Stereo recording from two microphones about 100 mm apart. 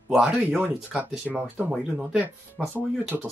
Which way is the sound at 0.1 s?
5° right (ahead or behind).